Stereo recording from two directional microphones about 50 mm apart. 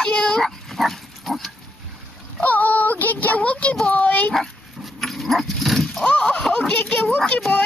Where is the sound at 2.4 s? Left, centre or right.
Left.